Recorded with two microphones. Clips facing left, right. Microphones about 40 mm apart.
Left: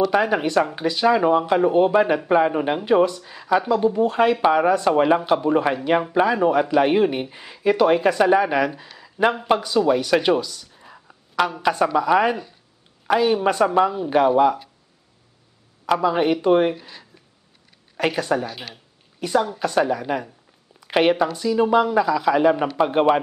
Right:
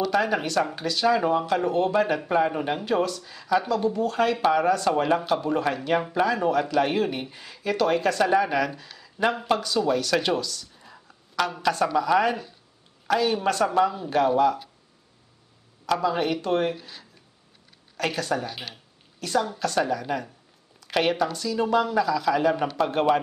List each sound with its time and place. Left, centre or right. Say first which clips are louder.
0.1 s speech: left 4 dB; centre
9.8 s a sound: left 6 dB; centre
11.6 s speech: left 2 dB; centre
15.8 s speech: left 5 dB; centre
18.5 s speech: left 2 dB; centre
19.1 s a woman's voice: left 4 dB; centre